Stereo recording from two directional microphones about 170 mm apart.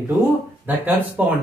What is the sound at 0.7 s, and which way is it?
Speech, 10° right (ahead or behind).